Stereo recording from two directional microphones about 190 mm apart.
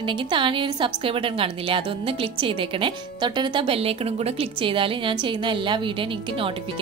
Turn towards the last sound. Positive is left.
turn(degrees=-25)  # may be behind; listen again after turning